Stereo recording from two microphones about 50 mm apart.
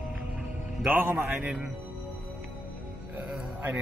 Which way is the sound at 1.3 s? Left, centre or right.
Centre.